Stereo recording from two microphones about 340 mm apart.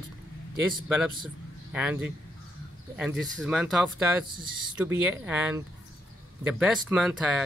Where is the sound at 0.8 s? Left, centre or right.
Centre.